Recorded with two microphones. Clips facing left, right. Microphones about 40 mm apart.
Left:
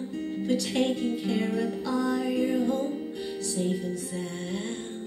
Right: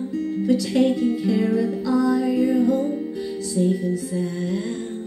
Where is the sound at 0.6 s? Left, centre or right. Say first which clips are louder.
Right 8 dB; left.